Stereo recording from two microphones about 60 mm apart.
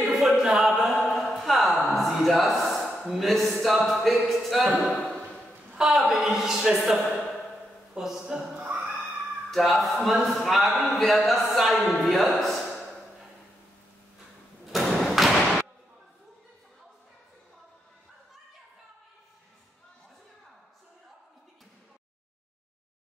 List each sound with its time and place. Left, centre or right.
0.0 s a sound: centre
2.0 s a man's voice: centre
8.5 s a sound: centre
9.5 s a man's voice: centre
12.0 s music: centre
14.7 s thump: centre